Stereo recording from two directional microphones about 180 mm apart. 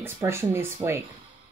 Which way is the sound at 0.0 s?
15° right (ahead or behind).